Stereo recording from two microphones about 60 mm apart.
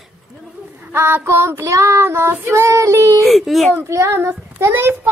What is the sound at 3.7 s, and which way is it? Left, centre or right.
Child singing, right.